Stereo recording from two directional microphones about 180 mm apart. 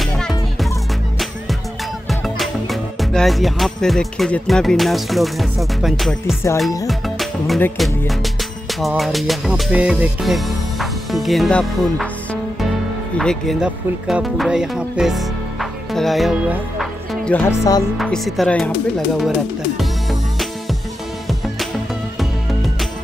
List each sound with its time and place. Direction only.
0.0 s music: centre (ahead or behind)
2.0 s music: centre (ahead or behind)
6.2 s music: 15° left (ahead or behind)
6.9 s music: centre (ahead or behind)
13.2 s speech: centre (ahead or behind)
17.5 s music: 20° left (ahead or behind)
17.9 s speech: centre (ahead or behind)
19.8 s music: centre (ahead or behind)